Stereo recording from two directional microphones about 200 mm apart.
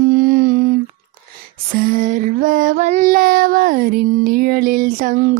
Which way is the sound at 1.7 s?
45° right (ahead or behind).